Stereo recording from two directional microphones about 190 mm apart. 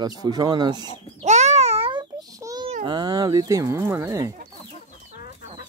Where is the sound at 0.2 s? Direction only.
20° right (ahead or behind).